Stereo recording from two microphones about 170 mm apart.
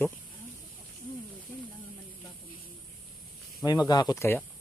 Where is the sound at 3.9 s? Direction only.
20° left (ahead or behind).